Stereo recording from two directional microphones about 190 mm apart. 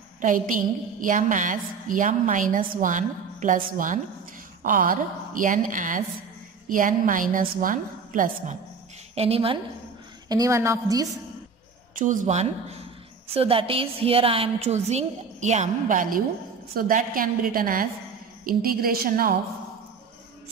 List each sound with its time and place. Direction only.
0.2 s a woman's voice: 45° right (ahead or behind)
9.1 s a woman's voice: 30° right (ahead or behind)
10.2 s a woman's voice: 20° right (ahead or behind)
11.9 s a woman's voice: 45° right (ahead or behind)